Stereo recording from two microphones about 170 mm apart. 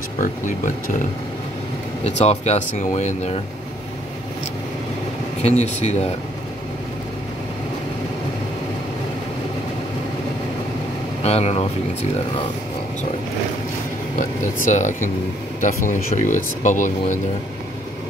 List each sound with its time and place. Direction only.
0.2 s speech: 50° left (ahead or behind)
2.0 s speech: 40° left (ahead or behind)
5.6 s speech: 40° left (ahead or behind)
11.2 s speech: 35° left (ahead or behind)
14.1 s speech: 45° left (ahead or behind)